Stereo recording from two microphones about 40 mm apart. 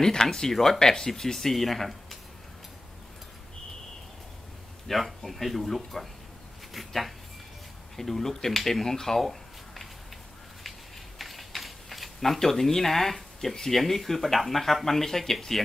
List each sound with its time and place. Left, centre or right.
0.0 s speech: centre
4.8 s speech: centre
11.1 s speech: centre